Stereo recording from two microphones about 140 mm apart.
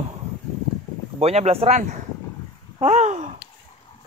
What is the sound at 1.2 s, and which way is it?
Speech, 50° right (ahead or behind).